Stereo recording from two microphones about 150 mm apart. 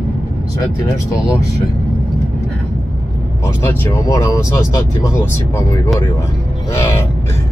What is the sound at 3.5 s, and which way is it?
Speech, 15° left (ahead or behind).